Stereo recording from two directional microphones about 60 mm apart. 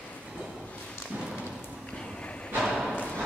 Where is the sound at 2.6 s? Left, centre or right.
Centre.